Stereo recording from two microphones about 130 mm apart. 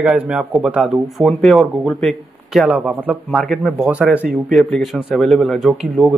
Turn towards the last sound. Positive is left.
turn(degrees=0)  # may be behind; listen again after turning